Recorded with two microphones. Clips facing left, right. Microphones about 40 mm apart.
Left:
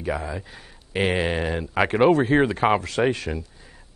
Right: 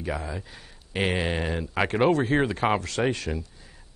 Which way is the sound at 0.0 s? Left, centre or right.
Centre.